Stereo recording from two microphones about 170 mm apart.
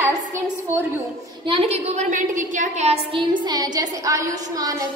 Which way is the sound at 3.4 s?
25° right (ahead or behind).